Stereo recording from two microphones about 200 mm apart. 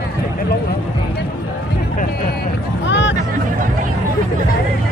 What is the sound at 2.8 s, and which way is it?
Music, 65° left (ahead or behind).